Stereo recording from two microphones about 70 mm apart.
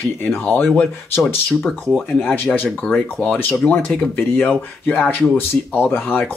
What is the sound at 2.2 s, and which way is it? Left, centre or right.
Speech, centre.